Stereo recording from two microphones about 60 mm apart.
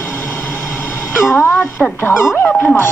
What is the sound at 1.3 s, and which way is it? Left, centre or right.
Dog, left.